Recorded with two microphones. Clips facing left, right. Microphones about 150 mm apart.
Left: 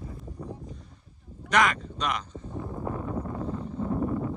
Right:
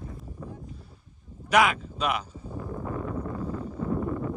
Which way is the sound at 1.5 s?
5° right (ahead or behind).